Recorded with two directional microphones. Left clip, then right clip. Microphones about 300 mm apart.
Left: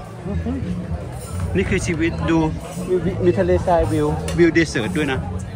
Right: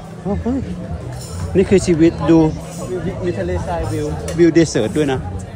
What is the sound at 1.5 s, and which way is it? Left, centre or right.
A man's voice, centre.